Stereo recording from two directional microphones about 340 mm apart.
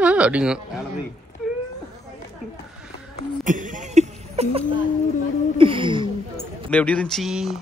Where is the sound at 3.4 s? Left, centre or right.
Right.